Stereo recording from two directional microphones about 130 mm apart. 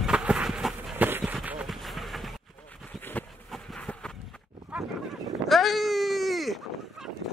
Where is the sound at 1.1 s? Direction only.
15° right (ahead or behind).